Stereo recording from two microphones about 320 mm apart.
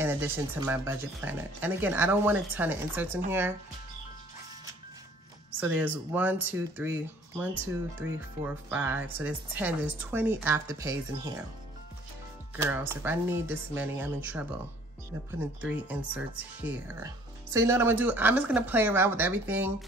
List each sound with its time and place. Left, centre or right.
0.0 s speech: centre
5.6 s speech: centre
12.5 s speech: centre
15.6 s speech: centre